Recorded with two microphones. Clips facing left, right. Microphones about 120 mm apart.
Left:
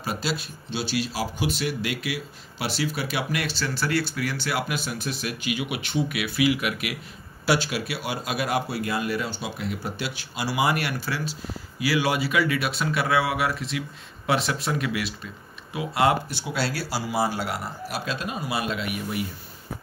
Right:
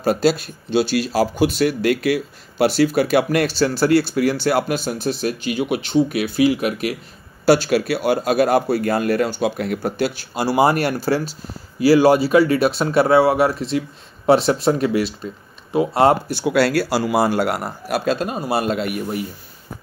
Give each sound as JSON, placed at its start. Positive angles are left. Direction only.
{"t": 0.0, "sound": "speech", "side_deg": -45}
{"t": 16.4, "sound": "a man's voice", "side_deg": -60}